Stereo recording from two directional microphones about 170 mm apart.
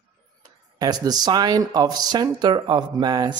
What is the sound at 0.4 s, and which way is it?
Speech, 25° right (ahead or behind).